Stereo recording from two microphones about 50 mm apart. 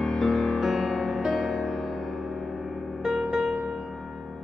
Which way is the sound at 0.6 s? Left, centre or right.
Centre.